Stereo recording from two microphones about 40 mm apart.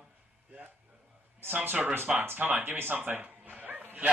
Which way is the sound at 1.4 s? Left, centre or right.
Right.